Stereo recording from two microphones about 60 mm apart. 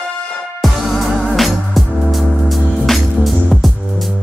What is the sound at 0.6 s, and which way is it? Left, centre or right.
Music, centre.